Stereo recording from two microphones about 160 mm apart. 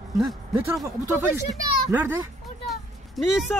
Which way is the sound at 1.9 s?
10° right (ahead or behind).